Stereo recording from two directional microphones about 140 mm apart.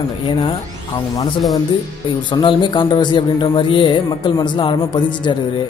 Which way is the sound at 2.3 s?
35° left (ahead or behind).